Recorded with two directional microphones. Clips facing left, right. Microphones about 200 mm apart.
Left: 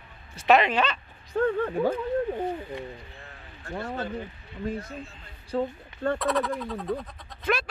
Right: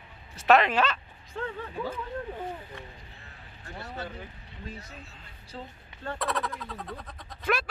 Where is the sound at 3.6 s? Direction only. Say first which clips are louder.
Left 7 dB; 50° left (ahead or behind).